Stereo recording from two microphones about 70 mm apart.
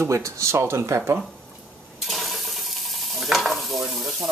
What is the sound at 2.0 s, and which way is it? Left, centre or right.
Frying, centre.